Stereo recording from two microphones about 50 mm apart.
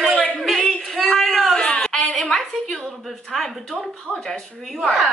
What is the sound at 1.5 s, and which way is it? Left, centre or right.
Speech, centre.